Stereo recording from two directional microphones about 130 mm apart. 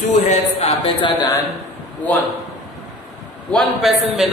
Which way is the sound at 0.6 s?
40° left (ahead or behind).